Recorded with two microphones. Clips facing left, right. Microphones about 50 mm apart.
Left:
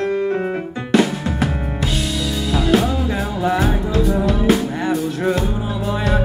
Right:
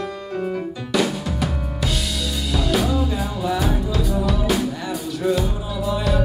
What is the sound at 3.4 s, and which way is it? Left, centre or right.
Music, left.